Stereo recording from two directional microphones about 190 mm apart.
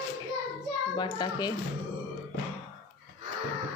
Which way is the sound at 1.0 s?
20° left (ahead or behind).